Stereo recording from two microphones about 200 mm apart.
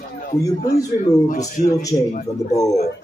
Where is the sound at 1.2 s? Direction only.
40° left (ahead or behind).